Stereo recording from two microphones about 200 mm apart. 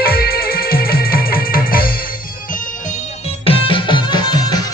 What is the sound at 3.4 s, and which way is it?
Music, 25° left (ahead or behind).